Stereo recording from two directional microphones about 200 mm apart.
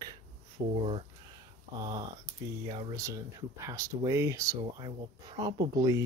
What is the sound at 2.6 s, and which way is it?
Speech, 20° right (ahead or behind).